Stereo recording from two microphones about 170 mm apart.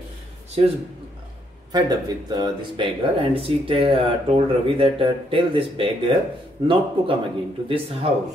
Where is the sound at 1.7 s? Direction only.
25° right (ahead or behind).